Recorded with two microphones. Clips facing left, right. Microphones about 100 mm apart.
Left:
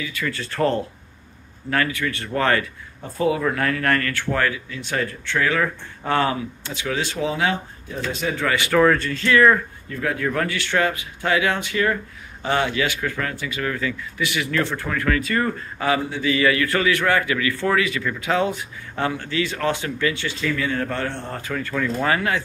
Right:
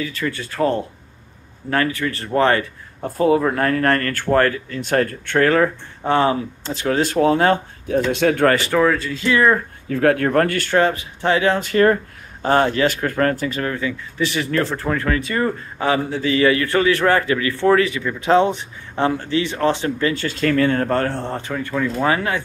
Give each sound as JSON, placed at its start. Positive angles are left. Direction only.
{"t": 0.0, "sound": "speech", "side_deg": -35}
{"t": 0.4, "sound": "speech", "side_deg": -15}
{"t": 1.7, "sound": "speech", "side_deg": -30}
{"t": 5.6, "sound": "speech", "side_deg": -25}
{"t": 6.7, "sound": "speech", "side_deg": -40}
{"t": 7.9, "sound": "speech", "side_deg": -65}
{"t": 8.7, "sound": "speech", "side_deg": -5}
{"t": 9.3, "sound": "speech", "side_deg": -25}
{"t": 9.8, "sound": "speech", "side_deg": -75}
{"t": 10.8, "sound": "speech", "side_deg": -30}
{"t": 13.7, "sound": "speech", "side_deg": -20}
{"t": 14.2, "sound": "speech", "side_deg": -35}
{"t": 21.3, "sound": "speech", "side_deg": -25}